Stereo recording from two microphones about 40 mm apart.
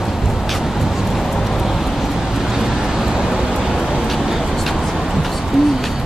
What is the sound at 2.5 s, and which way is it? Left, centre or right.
Vehicle, centre.